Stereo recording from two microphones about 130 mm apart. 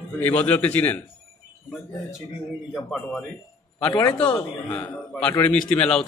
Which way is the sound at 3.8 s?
25° left (ahead or behind).